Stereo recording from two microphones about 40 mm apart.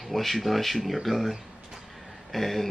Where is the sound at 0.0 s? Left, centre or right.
Centre.